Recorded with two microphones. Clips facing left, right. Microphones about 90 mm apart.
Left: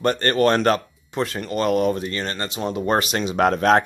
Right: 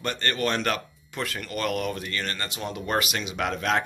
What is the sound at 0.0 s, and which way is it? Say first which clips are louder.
Speech: left 9 dB; 40° left (ahead or behind).